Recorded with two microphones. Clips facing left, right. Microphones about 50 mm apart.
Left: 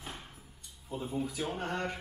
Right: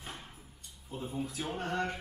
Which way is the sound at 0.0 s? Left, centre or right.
Centre.